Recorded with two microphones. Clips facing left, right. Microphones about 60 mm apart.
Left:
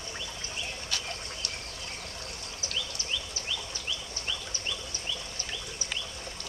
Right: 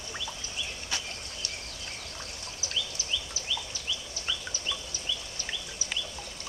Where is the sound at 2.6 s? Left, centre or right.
Left.